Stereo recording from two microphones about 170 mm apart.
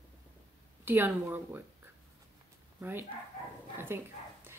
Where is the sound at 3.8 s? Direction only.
15° right (ahead or behind).